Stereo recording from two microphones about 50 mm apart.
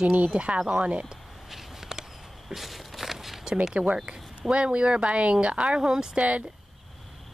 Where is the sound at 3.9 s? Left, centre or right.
Centre.